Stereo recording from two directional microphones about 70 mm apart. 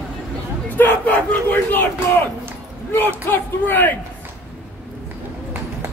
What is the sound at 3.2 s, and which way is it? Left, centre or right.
Speech, left.